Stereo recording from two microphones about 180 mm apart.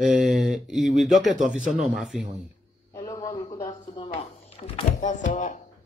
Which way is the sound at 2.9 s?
20° left (ahead or behind).